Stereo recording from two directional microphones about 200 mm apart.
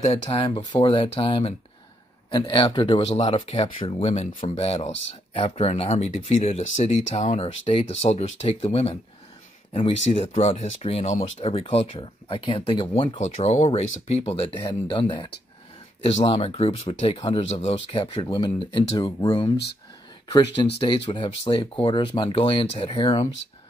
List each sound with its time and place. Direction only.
0.0 s speech: 30° left (ahead or behind)
10.1 s speech: 30° left (ahead or behind)
19.5 s speech: 55° left (ahead or behind)
20.6 s speech: 25° left (ahead or behind)